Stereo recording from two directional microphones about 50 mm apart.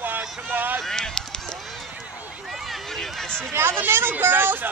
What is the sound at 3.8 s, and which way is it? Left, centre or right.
Speech, right.